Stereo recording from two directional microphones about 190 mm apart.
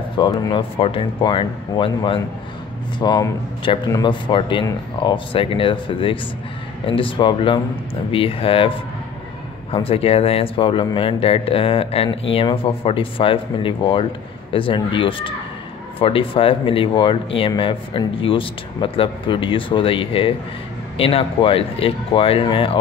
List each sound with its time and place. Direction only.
0.2 s speech: 20° left (ahead or behind)